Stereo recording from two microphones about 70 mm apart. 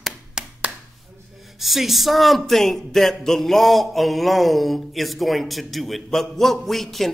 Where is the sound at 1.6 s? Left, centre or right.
Centre.